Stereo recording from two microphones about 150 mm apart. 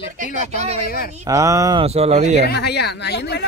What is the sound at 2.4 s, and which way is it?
Speech, 90° left.